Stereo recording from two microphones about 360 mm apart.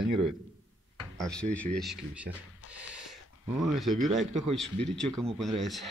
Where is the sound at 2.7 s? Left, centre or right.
Centre.